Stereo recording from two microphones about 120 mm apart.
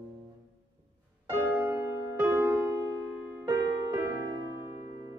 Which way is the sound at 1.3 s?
20° right (ahead or behind).